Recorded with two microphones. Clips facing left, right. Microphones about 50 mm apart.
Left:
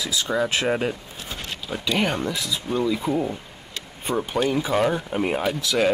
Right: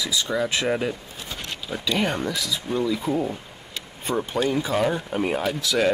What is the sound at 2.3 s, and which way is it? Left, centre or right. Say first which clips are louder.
Speech: even; left.